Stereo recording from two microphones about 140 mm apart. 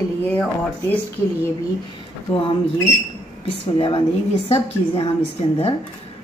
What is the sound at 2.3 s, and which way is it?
Speech, 35° left (ahead or behind).